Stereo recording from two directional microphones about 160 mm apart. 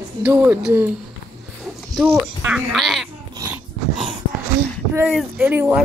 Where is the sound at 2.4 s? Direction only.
Centre (ahead or behind).